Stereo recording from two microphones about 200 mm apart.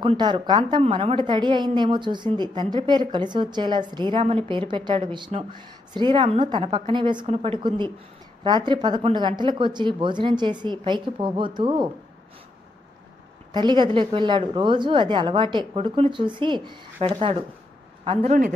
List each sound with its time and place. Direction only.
0.0 s a woman's voice: 25° right (ahead or behind)
13.5 s a woman's voice: 20° right (ahead or behind)